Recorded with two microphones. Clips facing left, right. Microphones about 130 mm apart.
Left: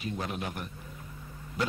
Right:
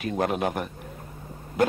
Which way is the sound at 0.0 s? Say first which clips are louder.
Right 10 dB; 65° right (ahead or behind).